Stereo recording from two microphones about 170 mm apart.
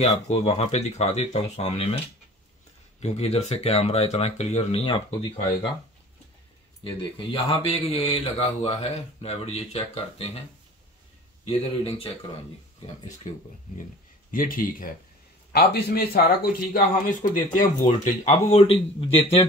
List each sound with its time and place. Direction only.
0.0 s a man's voice: 40° left (ahead or behind)
3.0 s a man's voice: 40° left (ahead or behind)
6.8 s a man's voice: 30° left (ahead or behind)
11.4 s a man's voice: 35° left (ahead or behind)
13.2 s speech: 45° left (ahead or behind)
15.5 s speech: 65° left (ahead or behind); by 19.4 s 35° left (ahead or behind)